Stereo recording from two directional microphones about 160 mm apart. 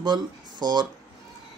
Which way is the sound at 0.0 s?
25° right (ahead or behind).